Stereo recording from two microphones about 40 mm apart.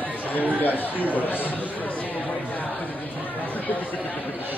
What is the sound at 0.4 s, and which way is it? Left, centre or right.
Speech, right.